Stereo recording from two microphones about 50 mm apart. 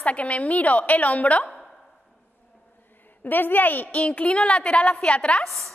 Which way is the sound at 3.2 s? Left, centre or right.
Left.